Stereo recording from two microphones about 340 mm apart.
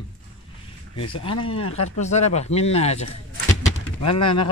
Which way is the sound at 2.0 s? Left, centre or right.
Centre.